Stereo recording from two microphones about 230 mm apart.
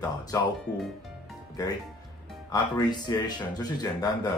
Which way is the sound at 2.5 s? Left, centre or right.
Centre.